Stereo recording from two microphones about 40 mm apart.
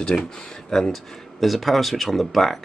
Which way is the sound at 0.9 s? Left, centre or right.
Centre.